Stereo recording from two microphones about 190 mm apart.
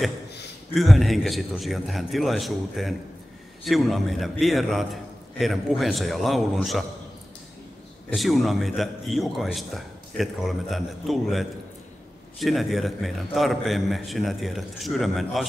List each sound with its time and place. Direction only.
0.7 s a man's voice: centre (ahead or behind)
8.1 s a man's voice: centre (ahead or behind)